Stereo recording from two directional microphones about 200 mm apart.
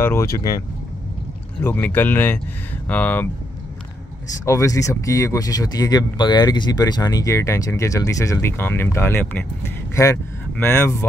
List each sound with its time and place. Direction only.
0.0 s speech: 15° left (ahead or behind)
4.5 s speech: 15° left (ahead or behind)
10.6 s speech: 10° left (ahead or behind)